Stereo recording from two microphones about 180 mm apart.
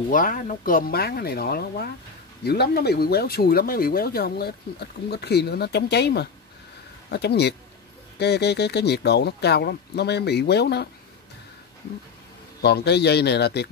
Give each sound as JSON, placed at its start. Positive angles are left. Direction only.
{"t": 0.1, "sound": "speech", "side_deg": 50}
{"t": 12.6, "sound": "speech", "side_deg": 65}